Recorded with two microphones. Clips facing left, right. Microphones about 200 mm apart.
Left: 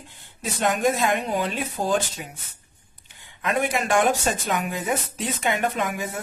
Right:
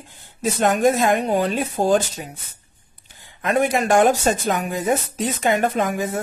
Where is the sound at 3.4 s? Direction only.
40° right (ahead or behind).